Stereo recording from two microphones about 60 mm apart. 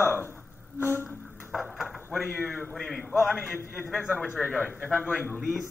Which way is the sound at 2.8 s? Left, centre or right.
Centre.